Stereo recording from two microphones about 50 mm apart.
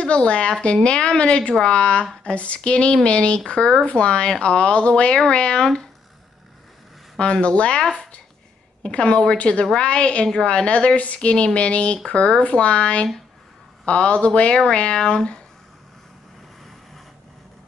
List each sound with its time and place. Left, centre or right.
0.0 s speech: centre
7.2 s speech: centre